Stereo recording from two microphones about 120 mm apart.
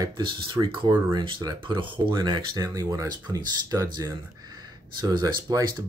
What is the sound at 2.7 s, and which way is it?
Speech, 30° right (ahead or behind).